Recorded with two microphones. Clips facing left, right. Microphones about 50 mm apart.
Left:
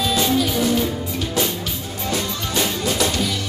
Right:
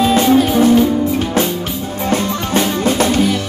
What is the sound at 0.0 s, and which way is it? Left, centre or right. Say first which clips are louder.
Music: right 8 dB; right.